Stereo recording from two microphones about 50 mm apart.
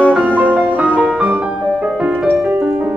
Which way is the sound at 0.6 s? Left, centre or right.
Right.